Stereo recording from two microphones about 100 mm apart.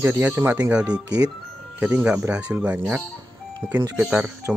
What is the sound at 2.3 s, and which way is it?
Speech, 10° right (ahead or behind).